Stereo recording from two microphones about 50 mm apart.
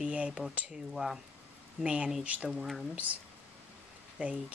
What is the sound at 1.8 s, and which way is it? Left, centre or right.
Speech, right.